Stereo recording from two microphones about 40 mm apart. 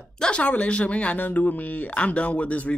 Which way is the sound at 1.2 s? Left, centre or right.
Left.